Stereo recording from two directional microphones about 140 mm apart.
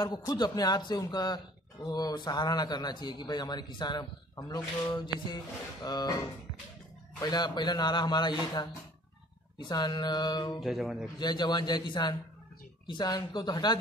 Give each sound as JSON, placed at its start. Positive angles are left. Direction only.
{"t": 0.3, "sound": "speech", "side_deg": 30}
{"t": 7.2, "sound": "a man's voice", "side_deg": 30}
{"t": 10.6, "sound": "speech", "side_deg": 0}
{"t": 11.1, "sound": "a man's voice", "side_deg": 30}